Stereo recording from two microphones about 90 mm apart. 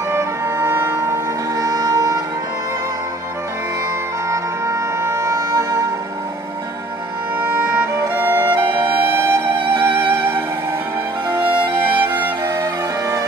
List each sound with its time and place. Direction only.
0.1 s music: 25° right (ahead or behind)
4.3 s music: 35° right (ahead or behind)
7.3 s music: 25° right (ahead or behind)
8.6 s music: 65° right (ahead or behind)
9.0 s music: 25° right (ahead or behind)
9.6 s music: 80° right
10.1 s music: 25° right (ahead or behind)